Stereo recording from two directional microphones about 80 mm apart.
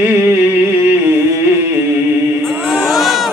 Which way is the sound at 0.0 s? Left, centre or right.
Right.